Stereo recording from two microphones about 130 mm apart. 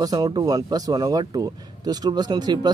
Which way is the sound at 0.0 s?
30° right (ahead or behind).